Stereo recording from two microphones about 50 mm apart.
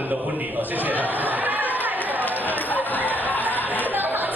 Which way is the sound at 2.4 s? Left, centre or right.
Left.